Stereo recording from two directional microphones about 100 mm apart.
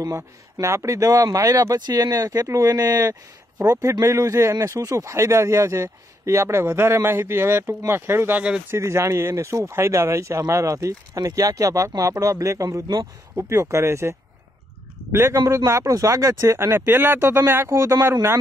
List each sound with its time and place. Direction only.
0.0 s speech: 30° right (ahead or behind); by 8.6 s 15° right (ahead or behind)
8.6 s speech: 25° right (ahead or behind)
15.1 s speech: 30° right (ahead or behind)